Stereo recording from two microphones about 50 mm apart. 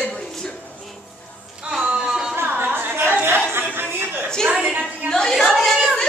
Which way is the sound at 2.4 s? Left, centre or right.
Right.